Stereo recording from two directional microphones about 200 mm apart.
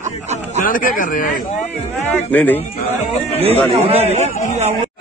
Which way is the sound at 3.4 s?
30° right (ahead or behind).